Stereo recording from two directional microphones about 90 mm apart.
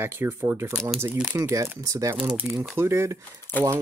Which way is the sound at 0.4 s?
30° right (ahead or behind).